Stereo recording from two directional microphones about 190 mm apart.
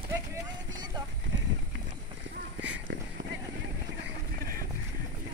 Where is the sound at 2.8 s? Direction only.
65° right (ahead or behind).